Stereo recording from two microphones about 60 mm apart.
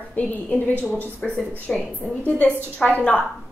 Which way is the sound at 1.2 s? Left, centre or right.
Centre.